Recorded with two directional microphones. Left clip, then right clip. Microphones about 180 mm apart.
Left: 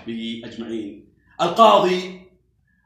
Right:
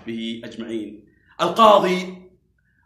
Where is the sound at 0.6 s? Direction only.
15° right (ahead or behind).